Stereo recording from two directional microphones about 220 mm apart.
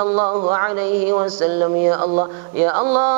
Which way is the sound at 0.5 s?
10° right (ahead or behind).